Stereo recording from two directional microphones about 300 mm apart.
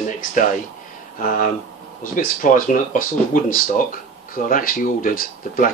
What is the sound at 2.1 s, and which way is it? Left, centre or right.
Speech, left.